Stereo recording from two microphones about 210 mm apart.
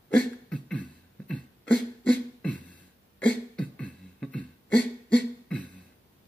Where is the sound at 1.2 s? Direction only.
5° left (ahead or behind).